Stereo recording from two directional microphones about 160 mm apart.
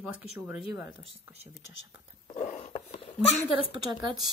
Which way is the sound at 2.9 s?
40° left (ahead or behind).